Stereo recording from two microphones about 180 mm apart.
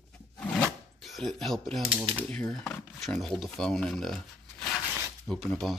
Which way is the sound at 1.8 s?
30° right (ahead or behind).